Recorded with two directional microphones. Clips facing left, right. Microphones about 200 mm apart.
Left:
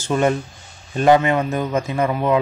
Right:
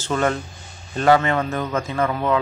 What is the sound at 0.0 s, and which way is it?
Speech, 15° left (ahead or behind).